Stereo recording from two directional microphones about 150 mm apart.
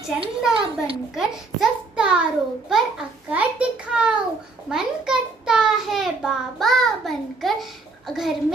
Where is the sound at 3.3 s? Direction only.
10° right (ahead or behind).